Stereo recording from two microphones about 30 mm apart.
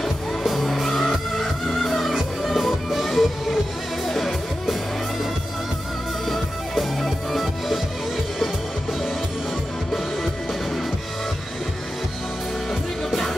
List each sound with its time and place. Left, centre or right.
0.0 s music: centre
6.2 s music: centre